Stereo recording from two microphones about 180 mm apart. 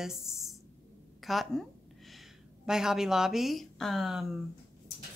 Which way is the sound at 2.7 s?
5° right (ahead or behind).